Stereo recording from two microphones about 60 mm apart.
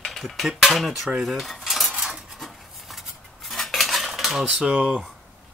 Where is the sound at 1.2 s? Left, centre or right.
Centre.